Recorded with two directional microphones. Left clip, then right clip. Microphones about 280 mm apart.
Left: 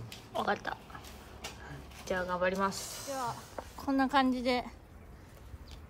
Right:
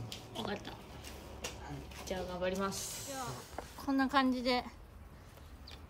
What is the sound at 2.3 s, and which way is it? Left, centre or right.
Speech, left.